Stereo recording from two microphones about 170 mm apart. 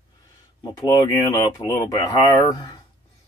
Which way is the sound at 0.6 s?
25° left (ahead or behind).